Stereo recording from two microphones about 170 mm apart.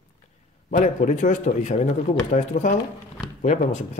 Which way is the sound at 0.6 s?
50° left (ahead or behind).